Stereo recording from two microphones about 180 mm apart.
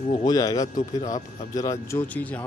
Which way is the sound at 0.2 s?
20° left (ahead or behind).